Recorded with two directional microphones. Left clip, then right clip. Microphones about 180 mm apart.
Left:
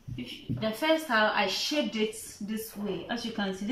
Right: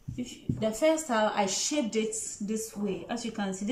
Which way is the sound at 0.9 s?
20° right (ahead or behind).